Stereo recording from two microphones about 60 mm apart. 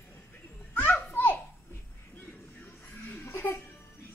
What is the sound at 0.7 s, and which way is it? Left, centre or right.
Children playing, left.